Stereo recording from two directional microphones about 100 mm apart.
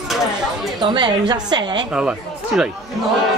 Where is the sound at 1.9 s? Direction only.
10° right (ahead or behind).